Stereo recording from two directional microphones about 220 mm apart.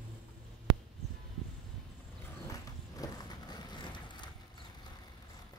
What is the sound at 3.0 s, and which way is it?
Vehicle, 20° left (ahead or behind).